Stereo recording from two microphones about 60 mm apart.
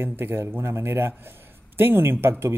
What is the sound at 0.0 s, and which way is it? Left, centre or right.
Speech, right.